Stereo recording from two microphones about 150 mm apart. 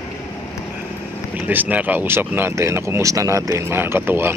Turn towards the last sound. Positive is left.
turn(degrees=-15)  # may be behind; listen again after turning